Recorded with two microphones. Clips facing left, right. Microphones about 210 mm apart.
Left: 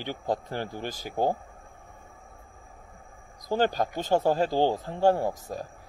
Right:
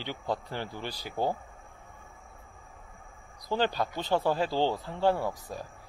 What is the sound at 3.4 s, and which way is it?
Speech, 45° left (ahead or behind).